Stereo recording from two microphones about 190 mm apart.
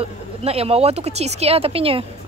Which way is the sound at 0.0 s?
30° right (ahead or behind).